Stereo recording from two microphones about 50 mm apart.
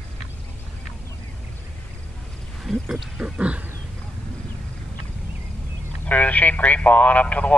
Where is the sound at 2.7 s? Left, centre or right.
Centre.